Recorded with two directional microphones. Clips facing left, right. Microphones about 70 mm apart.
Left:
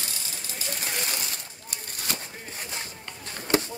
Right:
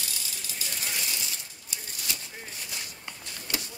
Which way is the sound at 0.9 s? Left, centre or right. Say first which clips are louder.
Left 3 dB; left.